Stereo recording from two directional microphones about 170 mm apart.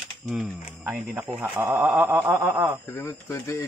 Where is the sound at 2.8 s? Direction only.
20° left (ahead or behind).